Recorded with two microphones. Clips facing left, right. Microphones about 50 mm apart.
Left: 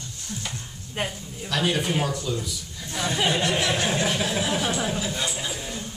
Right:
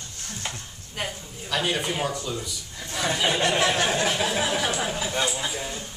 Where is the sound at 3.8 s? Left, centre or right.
Right.